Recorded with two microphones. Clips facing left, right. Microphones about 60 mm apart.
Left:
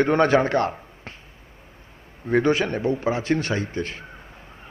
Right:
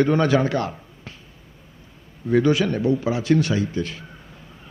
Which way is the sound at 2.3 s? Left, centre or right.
Left.